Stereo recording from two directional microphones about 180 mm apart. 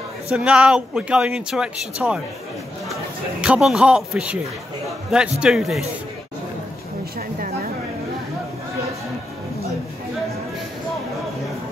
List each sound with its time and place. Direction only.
0.3 s speech: 5° right (ahead or behind)
3.3 s speech: 5° right (ahead or behind)
5.4 s speech: centre (ahead or behind)
7.2 s a sound: 50° right (ahead or behind)